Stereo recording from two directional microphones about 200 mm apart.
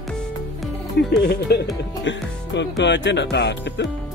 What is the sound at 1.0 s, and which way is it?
Speech, 55° left (ahead or behind).